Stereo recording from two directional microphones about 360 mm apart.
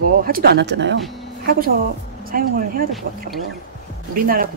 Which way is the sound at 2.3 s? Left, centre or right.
Right.